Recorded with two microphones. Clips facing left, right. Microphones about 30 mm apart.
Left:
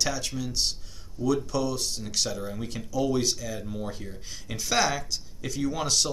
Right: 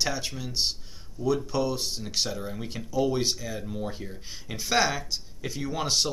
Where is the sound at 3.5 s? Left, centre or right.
Centre.